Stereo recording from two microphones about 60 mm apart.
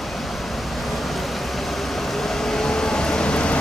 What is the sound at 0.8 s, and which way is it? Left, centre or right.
Vehicle, centre.